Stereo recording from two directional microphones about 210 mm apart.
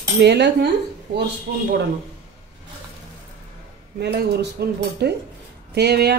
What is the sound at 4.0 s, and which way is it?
Speech, 50° right (ahead or behind).